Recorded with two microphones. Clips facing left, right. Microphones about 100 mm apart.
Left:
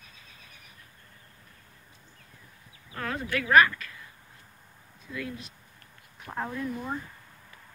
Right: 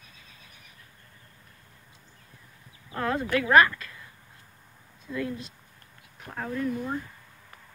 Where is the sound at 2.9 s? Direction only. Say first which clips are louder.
Right 5 dB; 25° right (ahead or behind).